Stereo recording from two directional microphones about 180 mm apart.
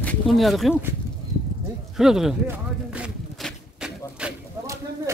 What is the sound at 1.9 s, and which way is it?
Speech, 5° right (ahead or behind).